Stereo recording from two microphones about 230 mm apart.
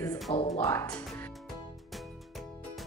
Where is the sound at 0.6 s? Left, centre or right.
Centre.